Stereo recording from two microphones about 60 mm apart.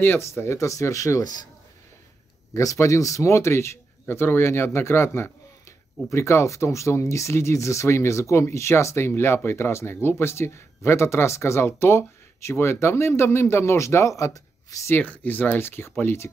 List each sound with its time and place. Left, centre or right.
0.2 s speech: left
2.5 s speech: left
15.0 s speech: left